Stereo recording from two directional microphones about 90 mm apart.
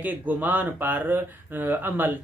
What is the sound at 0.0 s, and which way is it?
Speech, 20° right (ahead or behind).